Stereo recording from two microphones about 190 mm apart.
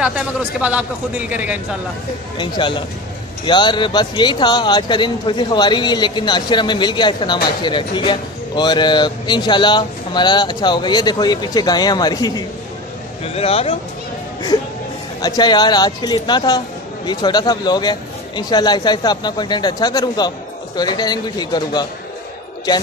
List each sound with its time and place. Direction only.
0.0 s speech: 5° right (ahead or behind)
2.3 s speech: 25° left (ahead or behind)
13.2 s a man's voice: 30° left (ahead or behind)
15.2 s speech: 20° left (ahead or behind)